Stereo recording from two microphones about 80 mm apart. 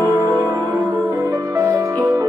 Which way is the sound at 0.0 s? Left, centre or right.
Right.